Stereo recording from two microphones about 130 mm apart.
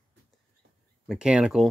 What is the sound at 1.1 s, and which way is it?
Speech, 5° right (ahead or behind).